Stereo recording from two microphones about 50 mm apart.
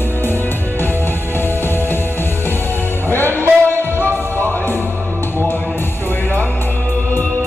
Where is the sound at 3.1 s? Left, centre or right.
Left.